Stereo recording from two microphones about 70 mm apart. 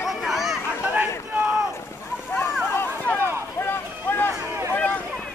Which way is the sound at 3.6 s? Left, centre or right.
Left.